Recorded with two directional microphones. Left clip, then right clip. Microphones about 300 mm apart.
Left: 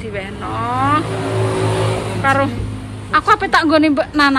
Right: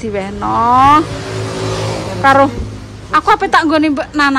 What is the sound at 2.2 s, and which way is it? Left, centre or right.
Speech, centre.